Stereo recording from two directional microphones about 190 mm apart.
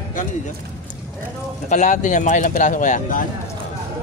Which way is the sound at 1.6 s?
40° left (ahead or behind).